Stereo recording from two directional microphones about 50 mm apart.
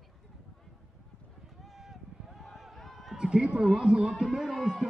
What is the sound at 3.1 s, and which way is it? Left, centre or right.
Speech, centre.